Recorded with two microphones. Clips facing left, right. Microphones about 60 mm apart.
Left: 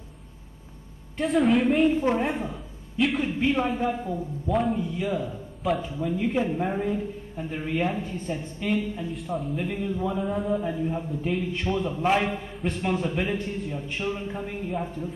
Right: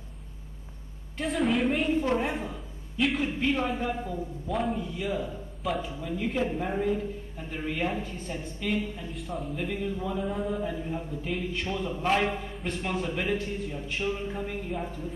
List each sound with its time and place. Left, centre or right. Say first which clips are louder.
1.1 s a man's voice: left 5 dB; centre